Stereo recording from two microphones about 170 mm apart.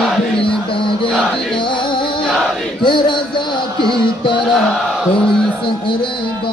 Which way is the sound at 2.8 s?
25° left (ahead or behind).